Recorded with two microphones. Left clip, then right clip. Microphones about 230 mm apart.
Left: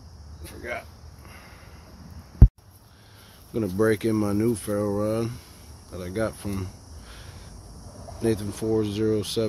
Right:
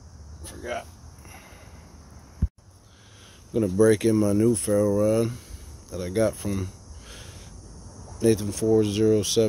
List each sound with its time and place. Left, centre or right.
0.4 s speech: centre
3.5 s speech: centre
5.9 s cricket: centre
8.2 s speech: centre